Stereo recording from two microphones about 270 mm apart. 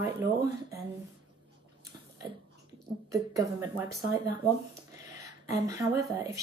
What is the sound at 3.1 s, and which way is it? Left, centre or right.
Speech, centre.